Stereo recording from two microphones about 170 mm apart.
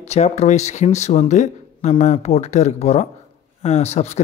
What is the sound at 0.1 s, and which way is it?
Speech, 40° left (ahead or behind).